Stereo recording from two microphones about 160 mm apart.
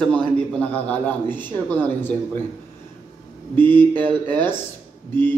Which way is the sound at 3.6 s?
10° left (ahead or behind).